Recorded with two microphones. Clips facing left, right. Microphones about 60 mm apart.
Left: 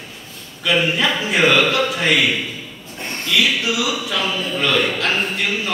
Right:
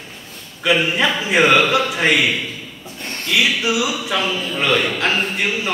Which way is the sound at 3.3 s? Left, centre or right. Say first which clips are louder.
Right 1 dB; right.